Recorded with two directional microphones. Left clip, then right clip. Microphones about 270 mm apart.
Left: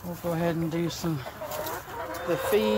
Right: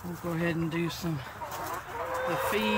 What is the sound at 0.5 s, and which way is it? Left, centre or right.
Speech, centre.